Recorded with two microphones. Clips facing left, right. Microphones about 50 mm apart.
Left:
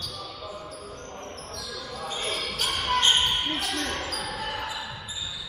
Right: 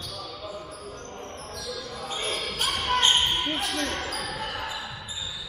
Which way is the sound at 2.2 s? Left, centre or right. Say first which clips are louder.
Right 1 dB; right.